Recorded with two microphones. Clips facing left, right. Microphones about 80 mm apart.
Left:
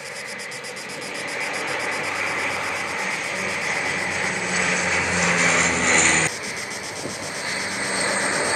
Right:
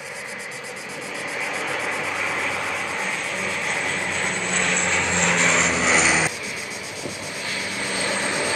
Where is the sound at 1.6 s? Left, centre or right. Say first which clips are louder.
Even; centre.